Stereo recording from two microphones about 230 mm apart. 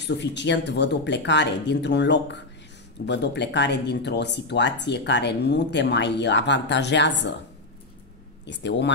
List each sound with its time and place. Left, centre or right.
0.0 s speech: left
8.5 s speech: left